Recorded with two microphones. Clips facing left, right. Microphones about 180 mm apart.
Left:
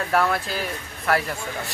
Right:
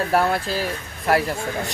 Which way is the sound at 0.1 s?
25° right (ahead or behind).